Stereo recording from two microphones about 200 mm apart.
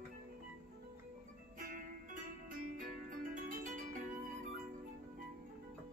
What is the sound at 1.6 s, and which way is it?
Music, 45° right (ahead or behind).